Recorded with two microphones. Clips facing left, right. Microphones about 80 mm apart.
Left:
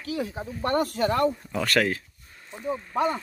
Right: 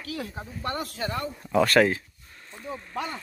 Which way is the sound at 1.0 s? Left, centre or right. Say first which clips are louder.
Left 8 dB; left.